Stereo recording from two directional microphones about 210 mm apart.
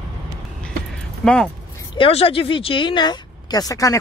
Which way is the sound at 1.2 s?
5° left (ahead or behind).